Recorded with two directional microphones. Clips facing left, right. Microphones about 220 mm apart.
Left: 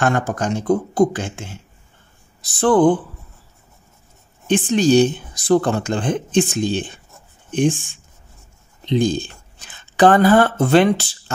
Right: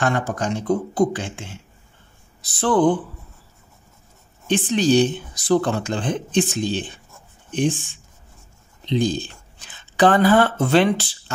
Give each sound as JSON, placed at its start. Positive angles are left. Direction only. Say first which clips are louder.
{"t": 0.0, "sound": "speech", "louder": "left 3 dB", "side_deg": 45}
{"t": 4.5, "sound": "speech", "louder": "left 3 dB", "side_deg": 45}
{"t": 8.8, "sound": "speech", "louder": "left 3 dB", "side_deg": 50}